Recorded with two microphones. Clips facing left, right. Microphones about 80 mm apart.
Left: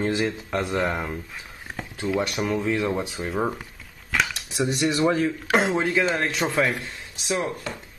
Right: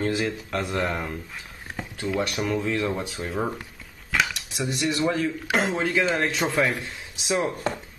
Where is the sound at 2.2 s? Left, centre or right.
Centre.